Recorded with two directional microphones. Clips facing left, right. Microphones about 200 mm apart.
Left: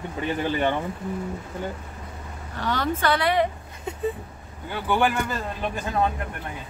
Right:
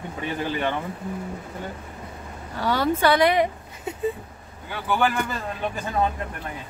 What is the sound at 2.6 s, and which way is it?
Speech, 10° right (ahead or behind).